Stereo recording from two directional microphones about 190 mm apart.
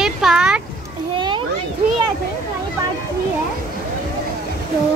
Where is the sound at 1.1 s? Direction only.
25° right (ahead or behind).